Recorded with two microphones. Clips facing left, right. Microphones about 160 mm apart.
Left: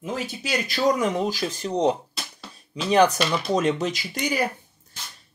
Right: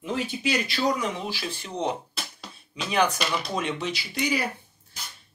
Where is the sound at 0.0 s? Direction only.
40° left (ahead or behind).